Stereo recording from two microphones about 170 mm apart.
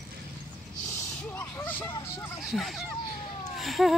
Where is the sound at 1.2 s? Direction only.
10° left (ahead or behind).